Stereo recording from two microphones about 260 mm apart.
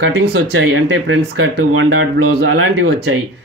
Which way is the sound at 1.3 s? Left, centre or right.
Right.